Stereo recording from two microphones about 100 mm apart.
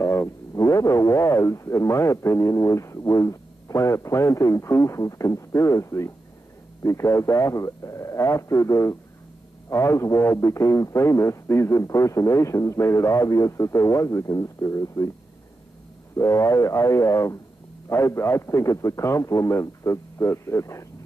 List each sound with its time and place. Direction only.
0.0 s speech: 25° left (ahead or behind)
16.2 s a man's voice: 30° left (ahead or behind)